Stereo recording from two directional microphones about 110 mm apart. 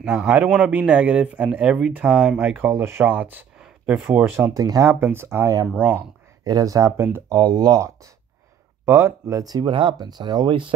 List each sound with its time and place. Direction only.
0.0 s speech: 10° right (ahead or behind)
3.5 s a sound: 5° right (ahead or behind)
3.9 s speech: 15° right (ahead or behind)
4.6 s speech: 30° right (ahead or behind)
7.3 s speech: 40° right (ahead or behind)
9.7 s speech: 50° right (ahead or behind)